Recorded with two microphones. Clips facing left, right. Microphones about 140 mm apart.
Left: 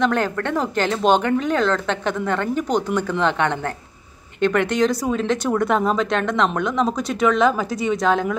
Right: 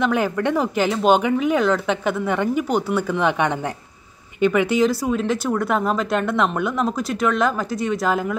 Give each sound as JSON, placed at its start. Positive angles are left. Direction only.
{"t": 0.0, "sound": "speech", "side_deg": -10}